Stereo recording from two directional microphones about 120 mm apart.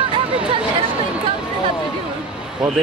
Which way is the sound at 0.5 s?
45° right (ahead or behind).